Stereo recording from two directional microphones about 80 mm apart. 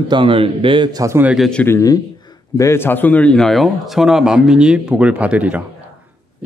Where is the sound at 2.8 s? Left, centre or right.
Left.